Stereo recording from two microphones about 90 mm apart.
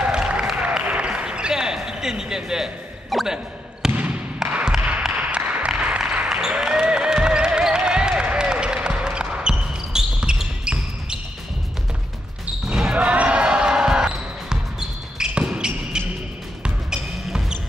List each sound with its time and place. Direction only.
0.0 s basketball bounce: 10° right (ahead or behind)
3.9 s basketball bounce: 15° right (ahead or behind)
4.4 s a sound: 10° right (ahead or behind)
12.6 s basketball bounce: 10° right (ahead or behind)